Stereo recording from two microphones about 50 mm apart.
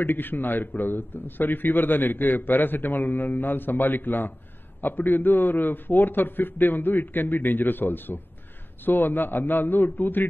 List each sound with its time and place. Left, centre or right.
0.0 s a man's voice: left